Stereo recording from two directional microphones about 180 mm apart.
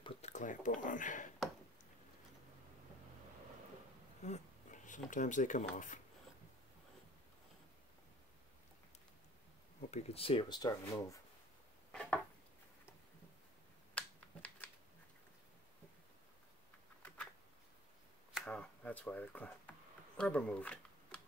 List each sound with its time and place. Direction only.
0.0 s speech: 40° left (ahead or behind)
4.2 s speech: 40° left (ahead or behind)
9.8 s speech: 35° left (ahead or behind); by 11.1 s 20° left (ahead or behind)
11.9 s a sound: 5° left (ahead or behind)
13.9 s finger snapping: 10° left (ahead or behind)
18.3 s chopping: 5° left (ahead or behind)
20.2 s speech: 5° left (ahead or behind)